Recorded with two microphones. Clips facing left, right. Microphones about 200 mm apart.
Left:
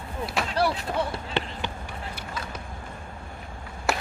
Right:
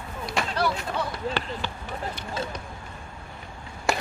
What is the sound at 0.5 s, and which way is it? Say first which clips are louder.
Speech: left 3 dB; 30° left (ahead or behind).